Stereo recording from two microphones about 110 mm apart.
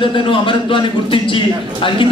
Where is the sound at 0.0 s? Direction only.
50° left (ahead or behind).